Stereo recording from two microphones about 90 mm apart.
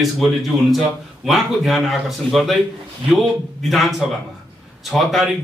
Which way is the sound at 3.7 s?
Centre (ahead or behind).